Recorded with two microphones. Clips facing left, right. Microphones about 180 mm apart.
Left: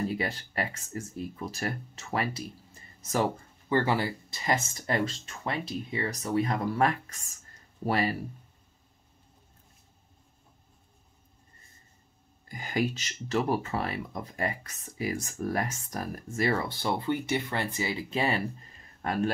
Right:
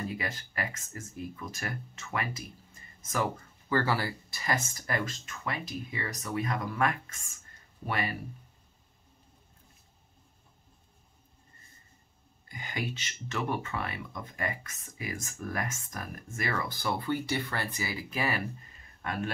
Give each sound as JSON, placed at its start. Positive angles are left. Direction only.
{"t": 0.0, "sound": "speech", "side_deg": 35}
{"t": 12.5, "sound": "speech", "side_deg": 40}
{"t": 18.9, "sound": "speech", "side_deg": 40}